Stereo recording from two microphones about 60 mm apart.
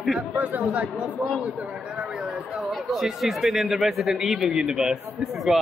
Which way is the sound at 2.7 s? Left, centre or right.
Centre.